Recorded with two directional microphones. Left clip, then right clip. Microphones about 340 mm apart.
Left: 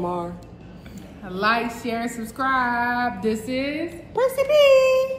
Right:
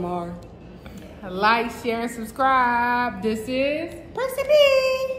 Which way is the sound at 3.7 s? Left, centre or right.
Centre.